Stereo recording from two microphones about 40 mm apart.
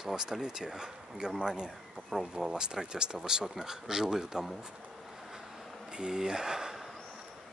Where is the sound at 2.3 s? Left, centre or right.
Centre.